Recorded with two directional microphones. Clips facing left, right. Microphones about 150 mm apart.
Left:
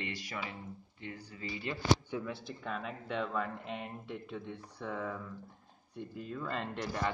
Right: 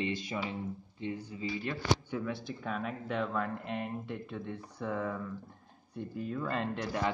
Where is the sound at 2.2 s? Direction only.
Centre (ahead or behind).